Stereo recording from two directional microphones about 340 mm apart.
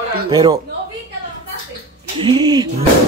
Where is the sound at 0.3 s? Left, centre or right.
Centre.